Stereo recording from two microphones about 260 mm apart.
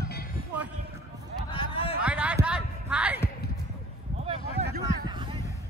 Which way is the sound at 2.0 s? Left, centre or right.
Centre.